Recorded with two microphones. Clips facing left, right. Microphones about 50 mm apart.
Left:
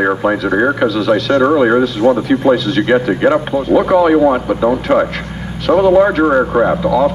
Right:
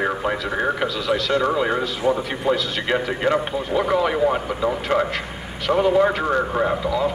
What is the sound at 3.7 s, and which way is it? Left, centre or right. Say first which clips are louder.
Speech: left 10 dB; centre.